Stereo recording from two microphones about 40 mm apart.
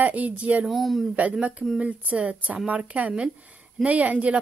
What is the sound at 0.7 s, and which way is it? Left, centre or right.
Mantra, centre.